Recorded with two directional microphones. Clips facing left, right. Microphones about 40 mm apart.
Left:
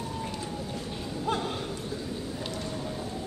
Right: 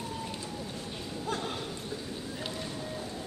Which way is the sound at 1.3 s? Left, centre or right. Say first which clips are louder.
Left 5 dB; left.